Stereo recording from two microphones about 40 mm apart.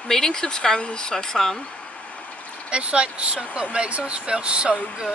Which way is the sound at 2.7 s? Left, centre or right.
Right.